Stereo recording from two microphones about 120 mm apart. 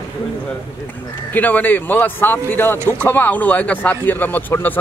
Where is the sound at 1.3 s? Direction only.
15° left (ahead or behind).